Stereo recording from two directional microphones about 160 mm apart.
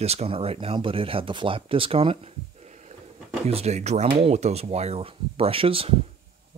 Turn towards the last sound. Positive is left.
turn(degrees=-35)  # may be behind; listen again after turning